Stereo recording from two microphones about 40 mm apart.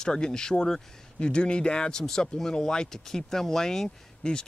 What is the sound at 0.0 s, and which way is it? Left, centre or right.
Speech, centre.